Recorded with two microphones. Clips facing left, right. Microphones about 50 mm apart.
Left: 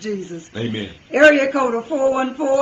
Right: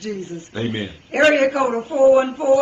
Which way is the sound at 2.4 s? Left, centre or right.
Left.